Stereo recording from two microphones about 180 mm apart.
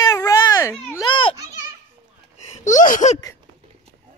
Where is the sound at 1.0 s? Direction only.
30° left (ahead or behind).